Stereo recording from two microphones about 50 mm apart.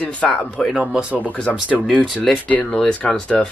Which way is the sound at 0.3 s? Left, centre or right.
Centre.